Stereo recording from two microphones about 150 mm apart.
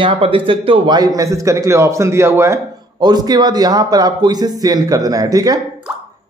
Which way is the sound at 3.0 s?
25° right (ahead or behind).